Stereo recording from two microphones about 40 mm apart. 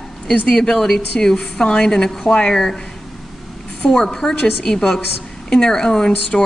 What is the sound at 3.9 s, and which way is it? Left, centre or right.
A woman's voice, centre.